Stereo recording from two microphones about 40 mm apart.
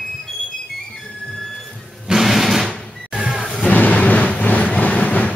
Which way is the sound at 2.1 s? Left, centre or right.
Centre.